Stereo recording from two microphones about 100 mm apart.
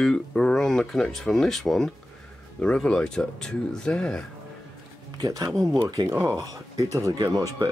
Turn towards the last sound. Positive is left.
turn(degrees=-35)  # may be behind; listen again after turning